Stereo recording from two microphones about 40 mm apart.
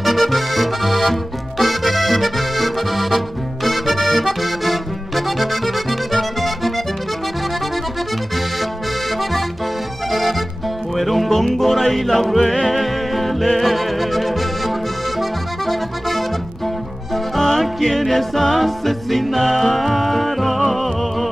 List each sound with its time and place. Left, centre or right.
0.0 s accordion: centre
3.6 s music: centre
11.0 s music: centre
15.1 s accordion: centre
17.1 s music: centre